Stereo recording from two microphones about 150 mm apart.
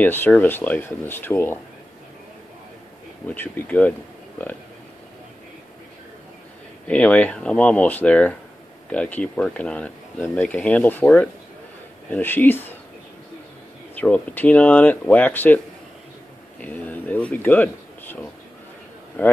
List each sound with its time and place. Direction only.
0.0 s speech: 10° left (ahead or behind)
3.3 s speech: 10° left (ahead or behind)
6.9 s speech: 10° left (ahead or behind)
13.9 s speech: 10° left (ahead or behind)
16.6 s speech: 10° left (ahead or behind)